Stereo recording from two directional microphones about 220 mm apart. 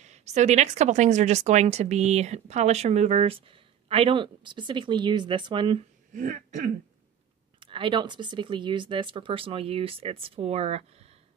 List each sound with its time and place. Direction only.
0.0 s speech: 30° right (ahead or behind)
6.1 s speech: 35° right (ahead or behind)
7.6 s speech: 20° right (ahead or behind)